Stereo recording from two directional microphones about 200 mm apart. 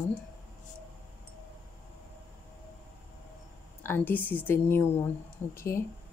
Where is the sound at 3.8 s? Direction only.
10° left (ahead or behind).